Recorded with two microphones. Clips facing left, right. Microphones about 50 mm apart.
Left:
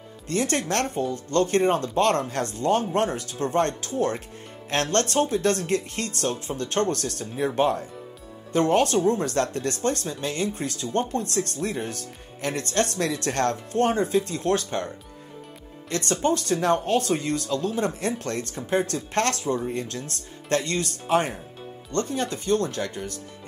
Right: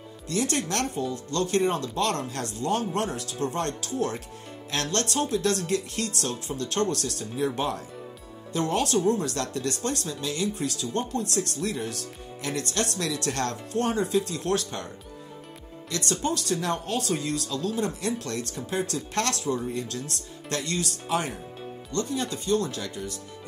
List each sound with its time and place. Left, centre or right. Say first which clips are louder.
0.3 s speech: left 3 dB; left
15.9 s speech: left 4 dB; left